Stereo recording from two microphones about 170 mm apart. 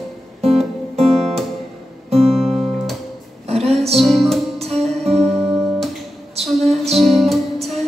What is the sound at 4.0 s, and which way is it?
Music, centre (ahead or behind).